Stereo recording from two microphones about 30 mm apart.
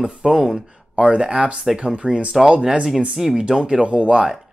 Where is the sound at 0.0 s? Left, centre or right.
Centre.